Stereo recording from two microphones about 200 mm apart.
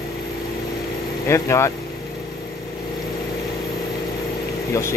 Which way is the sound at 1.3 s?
15° left (ahead or behind).